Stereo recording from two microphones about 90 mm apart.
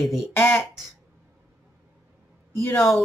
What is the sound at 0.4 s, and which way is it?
Speech, 30° left (ahead or behind).